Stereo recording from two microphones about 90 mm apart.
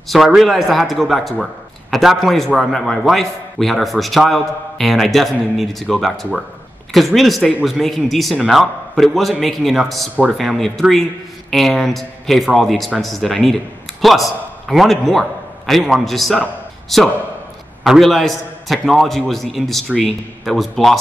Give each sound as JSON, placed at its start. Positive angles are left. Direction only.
{"t": 0.1, "sound": "a man's voice", "side_deg": 0}